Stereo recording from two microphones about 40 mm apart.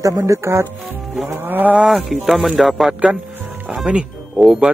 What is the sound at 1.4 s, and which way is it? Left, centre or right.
Speech, right.